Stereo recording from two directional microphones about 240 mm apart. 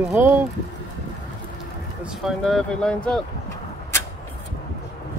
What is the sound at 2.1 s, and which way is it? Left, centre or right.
Speech, centre.